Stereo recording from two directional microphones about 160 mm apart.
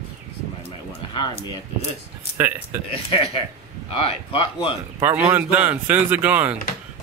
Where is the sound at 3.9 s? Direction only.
35° left (ahead or behind).